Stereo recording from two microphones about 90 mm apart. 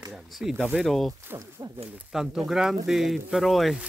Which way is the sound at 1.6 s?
45° right (ahead or behind).